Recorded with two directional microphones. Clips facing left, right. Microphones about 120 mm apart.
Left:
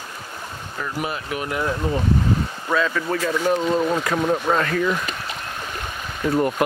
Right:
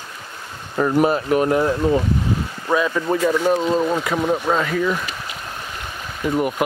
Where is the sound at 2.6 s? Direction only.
15° right (ahead or behind).